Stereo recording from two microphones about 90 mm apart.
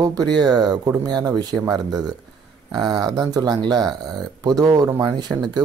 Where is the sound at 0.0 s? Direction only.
45° right (ahead or behind).